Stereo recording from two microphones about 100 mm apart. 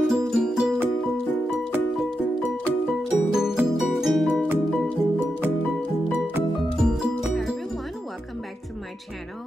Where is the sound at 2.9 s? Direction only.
5° right (ahead or behind).